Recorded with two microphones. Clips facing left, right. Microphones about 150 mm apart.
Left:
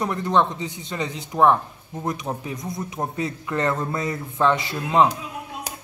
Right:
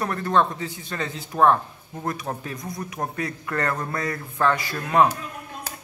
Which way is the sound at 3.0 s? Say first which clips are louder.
Left 2 dB; 20° left (ahead or behind).